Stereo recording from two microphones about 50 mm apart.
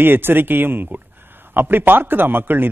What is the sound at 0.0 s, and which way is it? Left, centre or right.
A man's voice, right.